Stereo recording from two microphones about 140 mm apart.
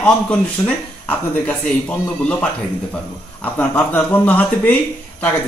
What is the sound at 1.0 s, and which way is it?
A man's voice, 10° left (ahead or behind).